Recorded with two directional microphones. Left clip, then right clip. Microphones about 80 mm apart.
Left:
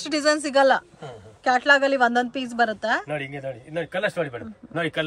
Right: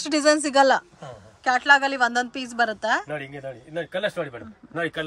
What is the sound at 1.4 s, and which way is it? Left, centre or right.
A woman's voice, centre.